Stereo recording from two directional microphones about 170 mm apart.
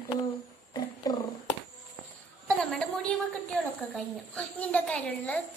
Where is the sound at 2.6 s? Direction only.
5° left (ahead or behind).